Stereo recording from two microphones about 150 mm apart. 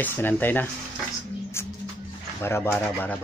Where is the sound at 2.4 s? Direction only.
15° left (ahead or behind).